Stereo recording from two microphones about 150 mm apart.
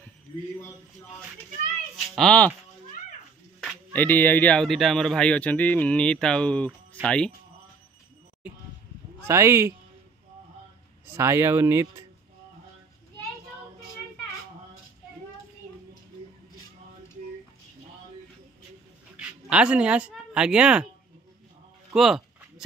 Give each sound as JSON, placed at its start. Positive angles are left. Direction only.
{"t": 2.1, "sound": "speech", "side_deg": 5}
{"t": 3.9, "sound": "speech", "side_deg": 10}
{"t": 9.3, "sound": "speech", "side_deg": -20}
{"t": 11.1, "sound": "speech", "side_deg": -20}
{"t": 19.5, "sound": "speech", "side_deg": -5}
{"t": 21.9, "sound": "speech", "side_deg": 0}